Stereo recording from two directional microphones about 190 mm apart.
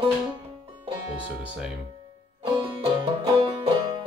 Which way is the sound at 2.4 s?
25° right (ahead or behind).